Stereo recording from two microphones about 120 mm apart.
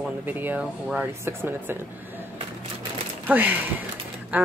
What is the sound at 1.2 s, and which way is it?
Speech, 20° right (ahead or behind).